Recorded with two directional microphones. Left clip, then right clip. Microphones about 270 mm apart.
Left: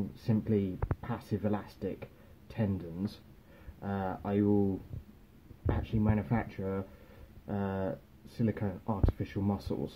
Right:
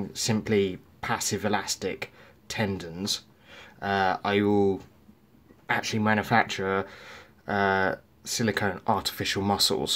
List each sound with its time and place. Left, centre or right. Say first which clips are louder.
0.3 s speech: right 7 dB; centre
5.7 s speech: right 10 dB; centre